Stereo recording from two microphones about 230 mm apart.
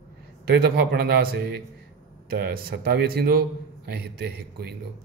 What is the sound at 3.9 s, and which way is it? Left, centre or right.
Speech, right.